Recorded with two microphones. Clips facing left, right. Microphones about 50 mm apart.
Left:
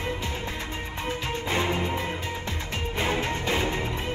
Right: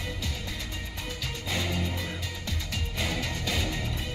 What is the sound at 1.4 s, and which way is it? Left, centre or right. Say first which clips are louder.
Music: left 5 dB; left.